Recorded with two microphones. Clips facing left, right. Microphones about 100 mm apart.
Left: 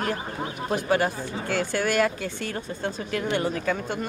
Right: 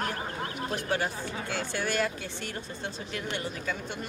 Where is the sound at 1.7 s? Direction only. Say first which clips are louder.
Left 6 dB; 55° left (ahead or behind).